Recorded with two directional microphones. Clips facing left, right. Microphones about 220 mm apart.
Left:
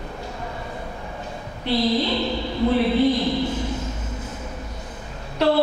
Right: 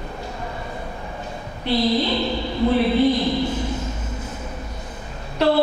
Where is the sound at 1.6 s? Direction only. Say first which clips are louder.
Right 1 dB; 10° right (ahead or behind).